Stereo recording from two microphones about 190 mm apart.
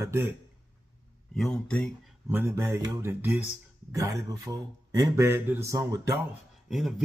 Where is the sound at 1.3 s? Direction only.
Centre (ahead or behind).